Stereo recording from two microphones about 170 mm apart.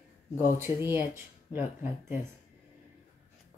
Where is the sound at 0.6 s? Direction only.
15° right (ahead or behind).